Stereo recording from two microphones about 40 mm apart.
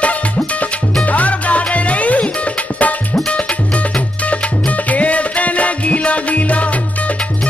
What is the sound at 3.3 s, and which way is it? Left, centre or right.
Music, left.